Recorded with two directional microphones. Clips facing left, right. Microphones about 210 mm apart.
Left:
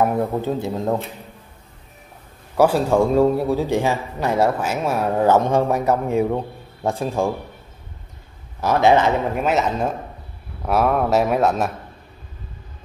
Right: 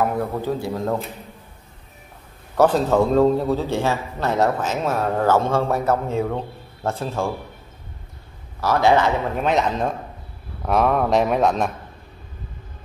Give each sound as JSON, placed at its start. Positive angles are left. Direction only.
{"t": 0.0, "sound": "a man's voice", "side_deg": 20}
{"t": 2.5, "sound": "a man's voice", "side_deg": 10}
{"t": 8.5, "sound": "a man's voice", "side_deg": 20}